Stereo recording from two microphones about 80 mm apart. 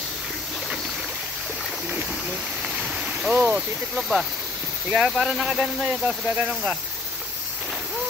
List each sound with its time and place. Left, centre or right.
2.6 s a sound: centre
3.3 s speech: right
3.9 s speech: centre
5.9 s speech: centre